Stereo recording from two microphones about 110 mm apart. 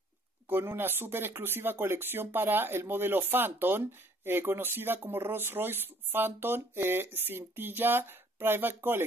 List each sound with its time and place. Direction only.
0.5 s speech: 20° right (ahead or behind)